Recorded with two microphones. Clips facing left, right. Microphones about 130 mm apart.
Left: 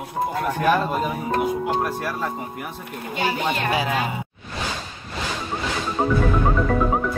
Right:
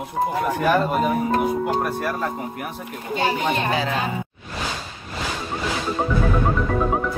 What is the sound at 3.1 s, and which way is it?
Speech, 25° right (ahead or behind).